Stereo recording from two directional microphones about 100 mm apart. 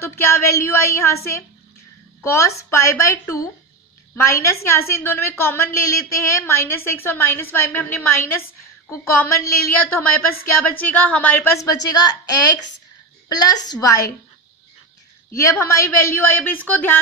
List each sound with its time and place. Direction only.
0.0 s a woman's voice: 25° left (ahead or behind)
11.5 s a woman's voice: 35° left (ahead or behind)
15.7 s a woman's voice: 25° left (ahead or behind)